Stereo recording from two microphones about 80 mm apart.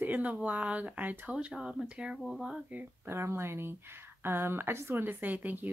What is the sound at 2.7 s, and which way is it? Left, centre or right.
Speech, right.